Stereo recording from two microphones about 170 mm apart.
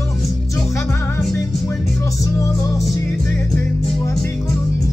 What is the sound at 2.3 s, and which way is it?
Music, 20° left (ahead or behind).